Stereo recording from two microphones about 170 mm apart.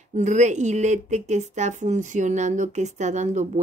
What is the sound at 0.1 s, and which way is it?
Speech, 45° right (ahead or behind).